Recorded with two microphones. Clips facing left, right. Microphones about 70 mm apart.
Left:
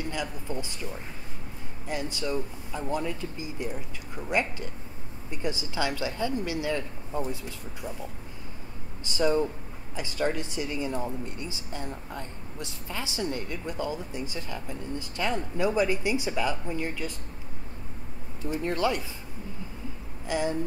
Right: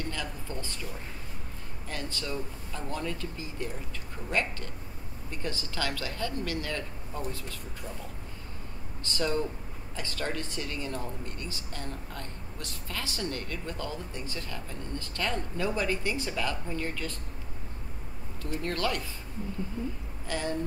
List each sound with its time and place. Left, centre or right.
0.0 s speech: centre
1.9 s speech: centre
9.0 s speech: centre
18.4 s speech: centre
20.2 s a sound: centre